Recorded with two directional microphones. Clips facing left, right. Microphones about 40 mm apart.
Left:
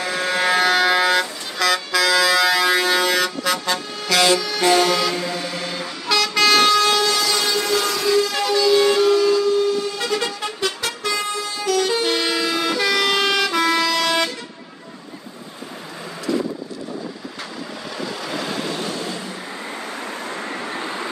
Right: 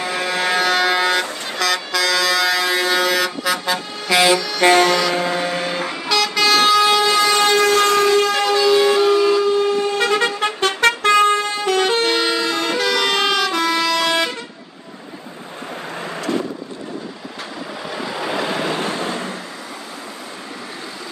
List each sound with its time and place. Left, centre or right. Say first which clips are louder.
0.0 s a sound: even; centre
4.6 s music: right 5 dB; right
5.1 s vehicle: right 5 dB; right
6.0 s vehicle: even; centre
7.4 s train: right 6 dB; right
8.3 s vehicle: right 3 dB; right
8.6 s vehicle: right 1 dB; centre
9.6 s vehicle: right 3 dB; right
12.1 s vehicle horn: right 2 dB; centre
13.1 s vehicle: right 1 dB; centre
17.8 s vehicle: right 4 dB; centre; by 19.3 s right